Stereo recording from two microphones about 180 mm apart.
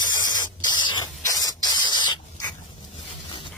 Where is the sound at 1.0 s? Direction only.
20° left (ahead or behind).